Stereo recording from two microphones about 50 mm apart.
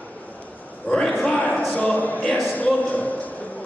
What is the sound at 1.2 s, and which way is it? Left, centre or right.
Cattle, left.